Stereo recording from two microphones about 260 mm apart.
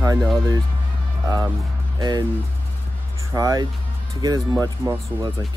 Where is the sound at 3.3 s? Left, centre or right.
Centre.